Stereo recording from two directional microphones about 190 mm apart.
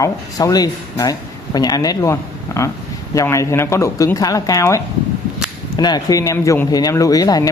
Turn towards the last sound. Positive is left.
turn(degrees=20)  # may be behind; listen again after turning